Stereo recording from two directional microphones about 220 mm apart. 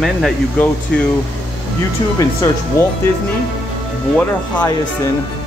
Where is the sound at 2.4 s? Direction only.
15° left (ahead or behind).